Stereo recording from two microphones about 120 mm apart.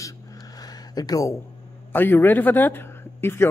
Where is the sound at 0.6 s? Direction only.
30° left (ahead or behind).